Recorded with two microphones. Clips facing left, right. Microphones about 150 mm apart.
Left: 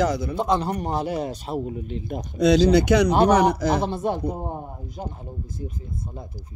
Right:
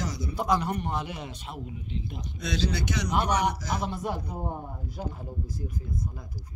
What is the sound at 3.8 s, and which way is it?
Speech, 25° left (ahead or behind).